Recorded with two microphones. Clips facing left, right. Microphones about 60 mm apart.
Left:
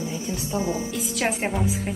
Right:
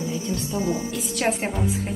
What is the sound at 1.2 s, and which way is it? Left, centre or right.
Speech, centre.